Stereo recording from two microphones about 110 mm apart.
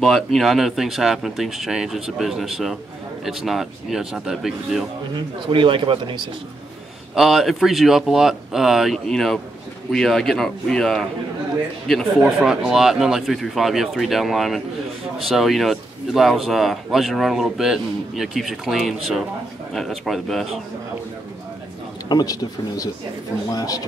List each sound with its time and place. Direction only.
0.0 s speech: centre (ahead or behind)
5.1 s speech: 50° right (ahead or behind)
7.2 s speech: centre (ahead or behind)
22.1 s speech: 35° left (ahead or behind)